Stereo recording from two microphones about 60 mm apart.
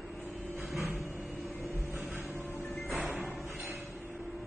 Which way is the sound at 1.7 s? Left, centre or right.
Right.